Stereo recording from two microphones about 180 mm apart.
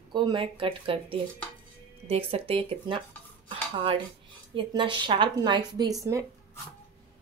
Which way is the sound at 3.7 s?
30° right (ahead or behind).